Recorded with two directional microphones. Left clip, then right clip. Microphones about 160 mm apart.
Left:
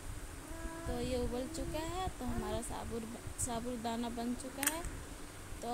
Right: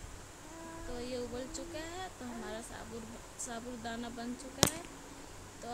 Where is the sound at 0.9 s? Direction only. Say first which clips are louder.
Left 3 dB; 15° left (ahead or behind).